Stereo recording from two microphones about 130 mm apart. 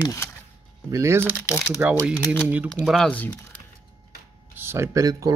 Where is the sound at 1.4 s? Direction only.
20° left (ahead or behind).